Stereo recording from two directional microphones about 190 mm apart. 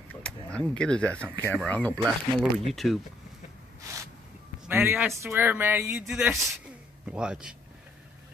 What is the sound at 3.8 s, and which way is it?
Speech, 15° right (ahead or behind).